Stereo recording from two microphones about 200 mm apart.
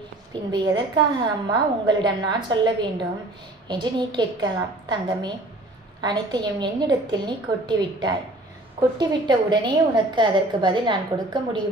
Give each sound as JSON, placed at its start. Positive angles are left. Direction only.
{"t": 0.3, "sound": "a woman's voice", "side_deg": -20}